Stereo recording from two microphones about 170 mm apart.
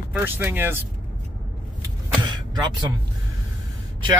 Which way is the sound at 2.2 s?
25° right (ahead or behind).